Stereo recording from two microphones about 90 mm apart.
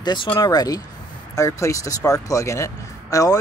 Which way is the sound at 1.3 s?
35° left (ahead or behind).